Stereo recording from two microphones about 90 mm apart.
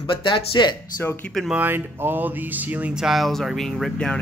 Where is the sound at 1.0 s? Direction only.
25° left (ahead or behind).